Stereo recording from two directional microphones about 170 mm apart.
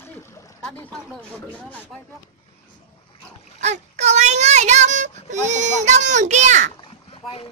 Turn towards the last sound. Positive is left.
turn(degrees=35)  # may be behind; listen again after turning